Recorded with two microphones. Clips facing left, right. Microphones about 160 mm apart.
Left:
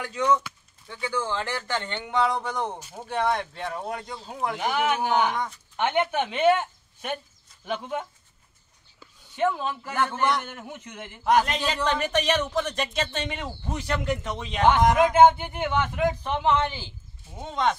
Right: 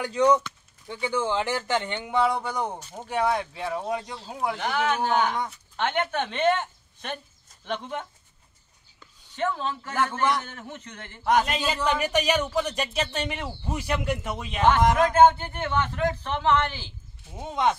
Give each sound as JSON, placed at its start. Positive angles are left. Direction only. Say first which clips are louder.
{"t": 0.0, "sound": "speech", "louder": "right 3 dB", "side_deg": -35}
{"t": 0.8, "sound": "speech", "louder": "right 3 dB", "side_deg": -20}
{"t": 4.6, "sound": "a man's voice", "louder": "left 2 dB", "side_deg": 10}
{"t": 9.0, "sound": "a sound", "louder": "left 3 dB", "side_deg": 10}
{"t": 9.9, "sound": "speech", "louder": "even", "side_deg": 0}
{"t": 10.5, "sound": "a man's voice", "louder": "left 1 dB", "side_deg": 10}
{"t": 11.2, "sound": "speech", "louder": "left 1 dB", "side_deg": 0}
{"t": 15.0, "sound": "a man's voice", "louder": "left 1 dB", "side_deg": 10}
{"t": 17.4, "sound": "speech", "louder": "right 1 dB", "side_deg": -10}